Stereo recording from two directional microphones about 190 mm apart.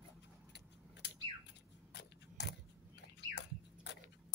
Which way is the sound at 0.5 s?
65° left (ahead or behind).